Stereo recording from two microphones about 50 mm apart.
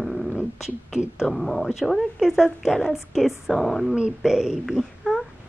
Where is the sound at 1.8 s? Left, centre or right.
Centre.